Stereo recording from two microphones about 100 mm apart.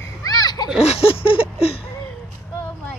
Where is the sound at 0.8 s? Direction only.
75° left (ahead or behind).